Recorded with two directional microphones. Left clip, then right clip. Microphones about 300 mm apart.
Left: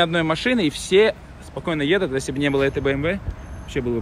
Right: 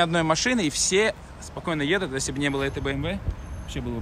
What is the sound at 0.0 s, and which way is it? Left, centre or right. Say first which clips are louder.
Speech: left 2 dB; centre.